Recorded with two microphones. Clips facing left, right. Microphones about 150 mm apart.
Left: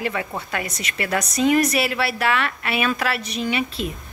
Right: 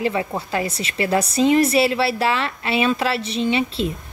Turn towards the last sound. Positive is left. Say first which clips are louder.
# right 4 dB
turn(degrees=-30)  # may be behind; listen again after turning